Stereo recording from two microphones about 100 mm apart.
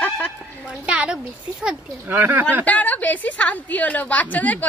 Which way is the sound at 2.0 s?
20° right (ahead or behind).